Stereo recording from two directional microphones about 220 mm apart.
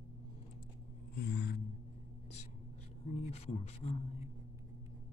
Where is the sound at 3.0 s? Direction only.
30° left (ahead or behind).